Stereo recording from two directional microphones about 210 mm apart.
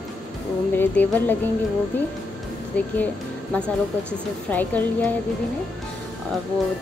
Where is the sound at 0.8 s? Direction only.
10° left (ahead or behind).